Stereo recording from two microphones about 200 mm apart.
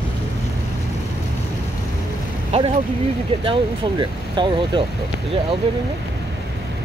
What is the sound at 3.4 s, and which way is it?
Speech, 25° right (ahead or behind).